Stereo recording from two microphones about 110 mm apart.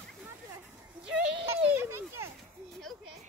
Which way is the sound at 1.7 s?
20° right (ahead or behind).